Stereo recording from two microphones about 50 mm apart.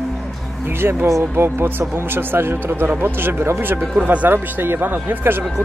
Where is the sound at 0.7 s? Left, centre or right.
Right.